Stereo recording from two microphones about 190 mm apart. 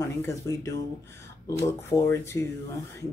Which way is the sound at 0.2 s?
15° left (ahead or behind).